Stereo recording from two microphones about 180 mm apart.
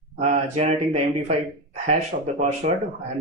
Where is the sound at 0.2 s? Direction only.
40° right (ahead or behind).